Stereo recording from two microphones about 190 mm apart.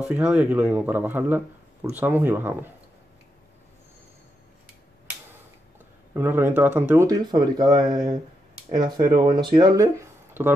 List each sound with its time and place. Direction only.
0.0 s speech: 5° right (ahead or behind)
6.1 s speech: 10° right (ahead or behind)